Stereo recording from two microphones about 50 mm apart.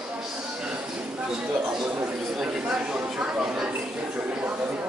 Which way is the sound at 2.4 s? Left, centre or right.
Right.